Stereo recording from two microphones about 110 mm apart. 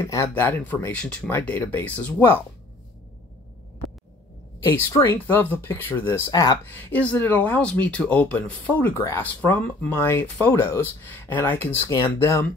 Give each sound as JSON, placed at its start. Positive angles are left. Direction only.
{"t": 0.0, "sound": "speech", "side_deg": 30}
{"t": 0.3, "sound": "speech", "side_deg": 15}
{"t": 4.6, "sound": "speech", "side_deg": 20}
{"t": 6.3, "sound": "speech", "side_deg": 35}
{"t": 6.6, "sound": "speech", "side_deg": 15}